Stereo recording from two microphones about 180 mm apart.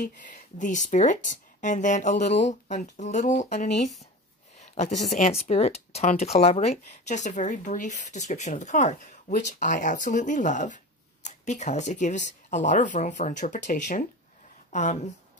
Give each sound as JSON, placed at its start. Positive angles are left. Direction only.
{"t": 0.0, "sound": "speech", "side_deg": 45}